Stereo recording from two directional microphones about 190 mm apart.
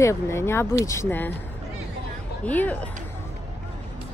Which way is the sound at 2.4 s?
10° left (ahead or behind).